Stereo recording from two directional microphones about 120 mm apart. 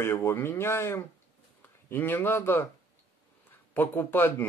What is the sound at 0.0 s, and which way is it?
Speech, 20° left (ahead or behind).